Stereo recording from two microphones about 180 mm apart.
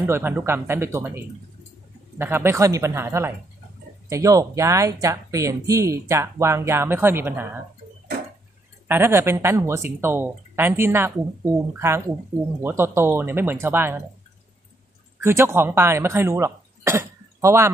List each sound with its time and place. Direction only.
0.0 s speech: 10° right (ahead or behind)
8.8 s speech: 15° right (ahead or behind)
15.2 s speech: 15° right (ahead or behind)